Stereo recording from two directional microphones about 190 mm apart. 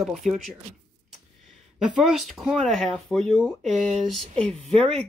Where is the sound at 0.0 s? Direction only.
Centre (ahead or behind).